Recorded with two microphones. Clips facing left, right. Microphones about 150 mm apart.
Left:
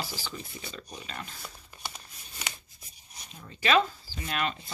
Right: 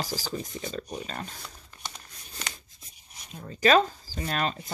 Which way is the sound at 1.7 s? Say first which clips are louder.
Even; 10° left (ahead or behind).